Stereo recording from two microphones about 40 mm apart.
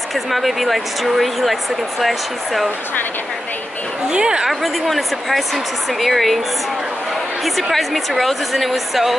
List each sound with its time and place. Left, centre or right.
0.1 s speech: centre
4.1 s a woman's voice: centre
4.5 s speech: centre
7.7 s speech: centre